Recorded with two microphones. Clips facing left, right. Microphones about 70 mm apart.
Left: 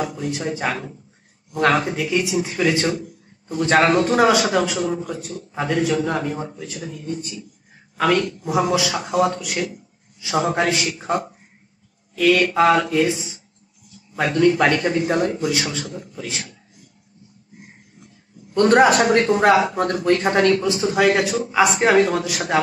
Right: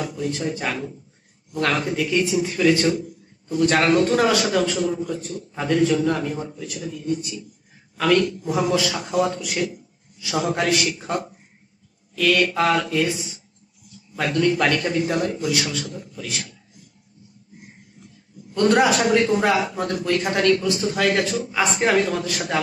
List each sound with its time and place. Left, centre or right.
0.0 s a man's voice: centre; by 7.4 s left
8.0 s a man's voice: centre
10.2 s a man's voice: left
18.7 s a man's voice: left; by 22.4 s centre